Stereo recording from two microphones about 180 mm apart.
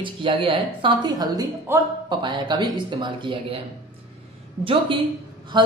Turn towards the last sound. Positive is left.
turn(degrees=-25)  # may be behind; listen again after turning